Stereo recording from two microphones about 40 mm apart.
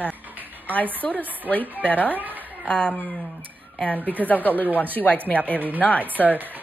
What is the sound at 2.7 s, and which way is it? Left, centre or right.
Speech, left.